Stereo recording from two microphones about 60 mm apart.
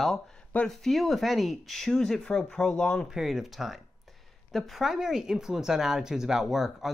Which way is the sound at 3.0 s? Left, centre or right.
Centre.